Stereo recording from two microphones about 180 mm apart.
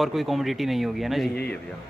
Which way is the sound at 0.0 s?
Centre (ahead or behind).